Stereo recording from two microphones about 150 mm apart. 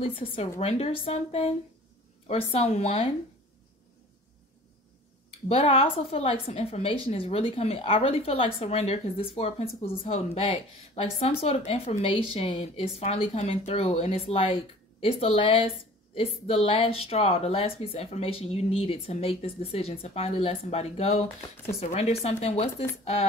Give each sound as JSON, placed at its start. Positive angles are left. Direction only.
{"t": 0.0, "sound": "a woman's voice", "side_deg": 40}
{"t": 5.5, "sound": "a woman's voice", "side_deg": 40}